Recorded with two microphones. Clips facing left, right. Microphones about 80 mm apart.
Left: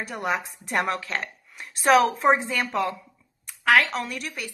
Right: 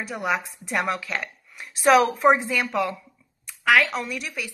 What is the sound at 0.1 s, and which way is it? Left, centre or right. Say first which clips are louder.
Speech: right 2 dB; centre.